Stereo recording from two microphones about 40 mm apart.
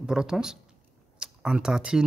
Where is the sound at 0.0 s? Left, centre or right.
Centre.